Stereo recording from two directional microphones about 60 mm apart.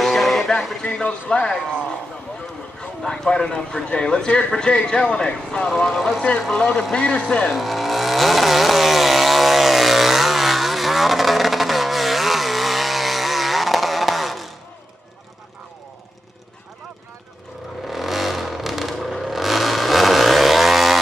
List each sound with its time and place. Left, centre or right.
0.0 s music: centre
0.6 s speech: centre
1.0 s a man's voice: left
5.7 s speech: centre
6.5 s a man's voice: centre
7.5 s vehicle: centre
17.8 s vehicle: centre